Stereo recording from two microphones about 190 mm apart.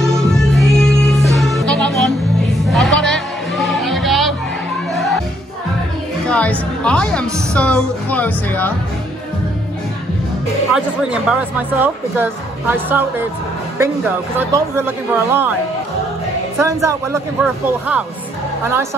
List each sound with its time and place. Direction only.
0.0 s music: centre (ahead or behind)
6.2 s music: 5° left (ahead or behind)
10.7 s speech: 5° right (ahead or behind)
14.4 s speech: 10° right (ahead or behind)
16.5 s speech: 15° right (ahead or behind)